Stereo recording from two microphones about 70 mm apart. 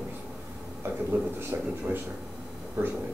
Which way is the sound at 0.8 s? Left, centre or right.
Right.